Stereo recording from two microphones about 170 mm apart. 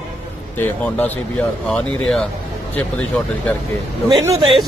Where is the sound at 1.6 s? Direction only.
5° left (ahead or behind).